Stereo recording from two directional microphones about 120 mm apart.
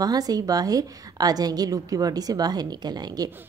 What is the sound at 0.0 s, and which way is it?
A woman's voice, 30° right (ahead or behind).